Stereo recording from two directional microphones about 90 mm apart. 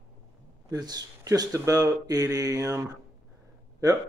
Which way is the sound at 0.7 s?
50° right (ahead or behind).